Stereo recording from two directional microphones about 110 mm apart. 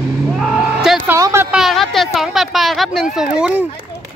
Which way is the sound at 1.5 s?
Centre (ahead or behind).